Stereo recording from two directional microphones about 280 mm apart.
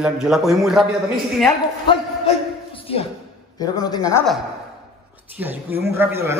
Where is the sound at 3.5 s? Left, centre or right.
Centre.